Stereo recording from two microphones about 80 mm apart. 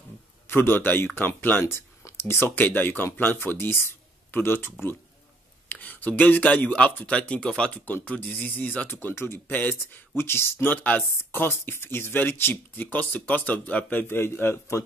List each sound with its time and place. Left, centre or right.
0.5 s speech: left